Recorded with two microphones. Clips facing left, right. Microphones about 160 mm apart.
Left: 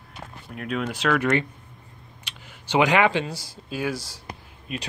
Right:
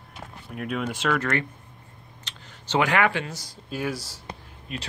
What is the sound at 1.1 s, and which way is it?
Speech, 20° left (ahead or behind).